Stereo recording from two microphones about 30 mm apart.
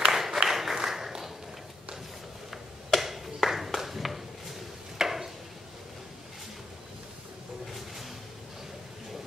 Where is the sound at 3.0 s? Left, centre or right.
Centre.